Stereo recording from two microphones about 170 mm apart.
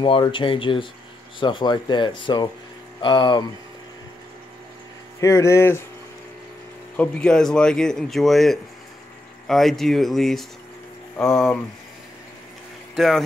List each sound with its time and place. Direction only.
0.0 s speech: 30° left (ahead or behind)
5.2 s speech: 15° left (ahead or behind)
7.0 s speech: 5° left (ahead or behind)
12.9 s speech: centre (ahead or behind)